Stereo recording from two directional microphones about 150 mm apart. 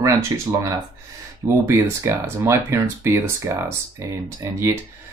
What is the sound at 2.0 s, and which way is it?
Speech, 15° right (ahead or behind).